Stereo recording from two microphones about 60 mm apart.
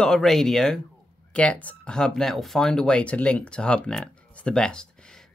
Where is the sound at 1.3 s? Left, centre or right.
Left.